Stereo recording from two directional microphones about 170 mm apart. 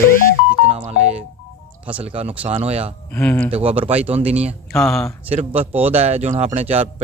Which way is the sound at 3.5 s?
35° right (ahead or behind).